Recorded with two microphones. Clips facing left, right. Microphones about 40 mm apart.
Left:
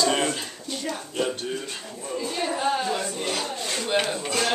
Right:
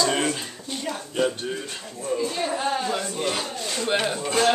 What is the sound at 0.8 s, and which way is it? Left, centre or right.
Speech, centre.